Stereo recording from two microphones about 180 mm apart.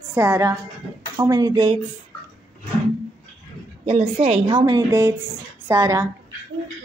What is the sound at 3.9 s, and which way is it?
A woman's voice, 30° right (ahead or behind).